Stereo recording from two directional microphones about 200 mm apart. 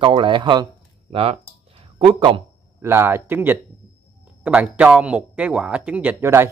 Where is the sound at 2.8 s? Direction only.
10° right (ahead or behind).